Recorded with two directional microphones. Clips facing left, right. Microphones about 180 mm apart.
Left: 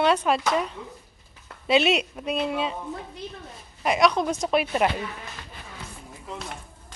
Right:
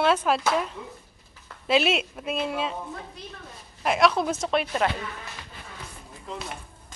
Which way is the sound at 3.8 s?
Centre (ahead or behind).